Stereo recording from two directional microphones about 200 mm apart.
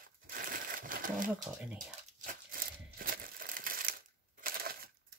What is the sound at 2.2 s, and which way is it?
Crushing, 45° right (ahead or behind).